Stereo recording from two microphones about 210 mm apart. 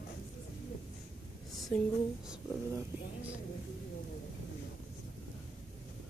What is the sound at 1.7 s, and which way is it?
Speech, 5° left (ahead or behind).